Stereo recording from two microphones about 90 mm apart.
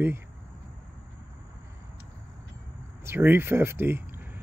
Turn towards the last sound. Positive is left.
turn(degrees=-25)  # may be behind; listen again after turning